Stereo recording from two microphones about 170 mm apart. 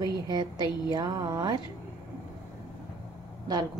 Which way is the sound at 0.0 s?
25° right (ahead or behind).